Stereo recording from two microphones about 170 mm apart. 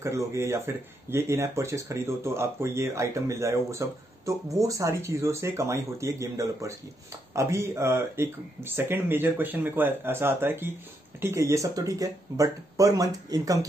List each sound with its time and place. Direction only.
0.0 s speech: 15° right (ahead or behind)